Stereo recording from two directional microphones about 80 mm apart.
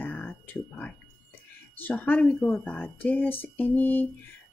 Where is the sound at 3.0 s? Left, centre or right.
Left.